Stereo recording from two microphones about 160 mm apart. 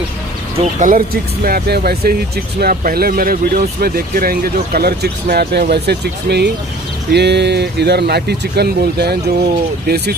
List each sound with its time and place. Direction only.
0.7 s speech: 60° right (ahead or behind); by 10.1 s 90° right